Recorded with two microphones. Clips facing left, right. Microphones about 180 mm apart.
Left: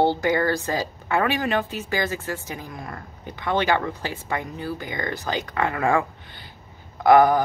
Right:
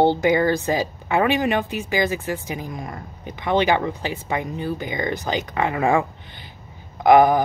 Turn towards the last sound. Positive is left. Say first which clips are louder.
# right 2 dB
turn(degrees=-20)  # may be behind; listen again after turning